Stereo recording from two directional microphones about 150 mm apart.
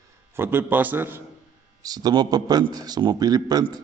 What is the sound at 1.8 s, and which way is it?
A man's voice, 25° right (ahead or behind).